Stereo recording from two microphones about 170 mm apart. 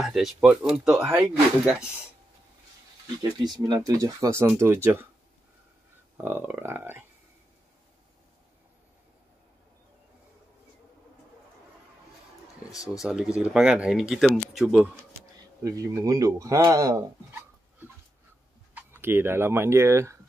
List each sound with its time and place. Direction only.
0.0 s speech: centre (ahead or behind)
3.2 s speech: 25° right (ahead or behind)
6.2 s speech: 10° right (ahead or behind)
13.0 s speech: 5° right (ahead or behind)
15.6 s speech: 20° right (ahead or behind)